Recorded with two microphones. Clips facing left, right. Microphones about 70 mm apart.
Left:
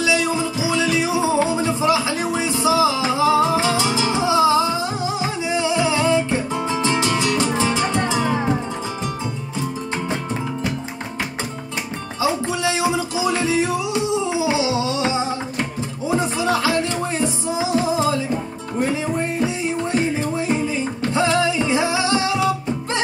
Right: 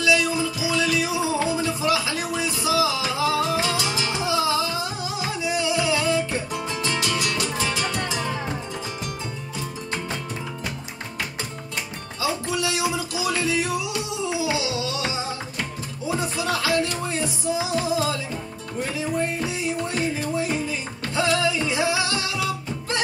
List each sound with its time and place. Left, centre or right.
0.0 s music: left
12.2 s music: left